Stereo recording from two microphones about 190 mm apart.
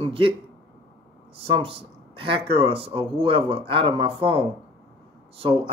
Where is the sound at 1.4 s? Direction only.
30° right (ahead or behind).